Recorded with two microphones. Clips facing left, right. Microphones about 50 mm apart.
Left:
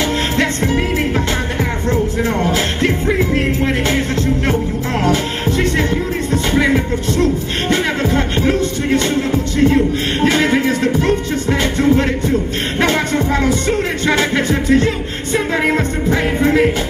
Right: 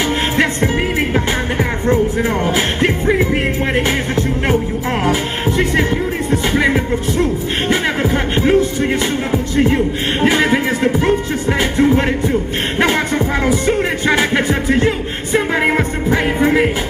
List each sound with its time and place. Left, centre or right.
1.1 s music: centre